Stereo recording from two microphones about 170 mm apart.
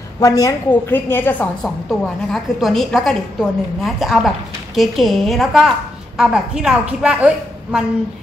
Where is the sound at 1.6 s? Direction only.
Centre (ahead or behind).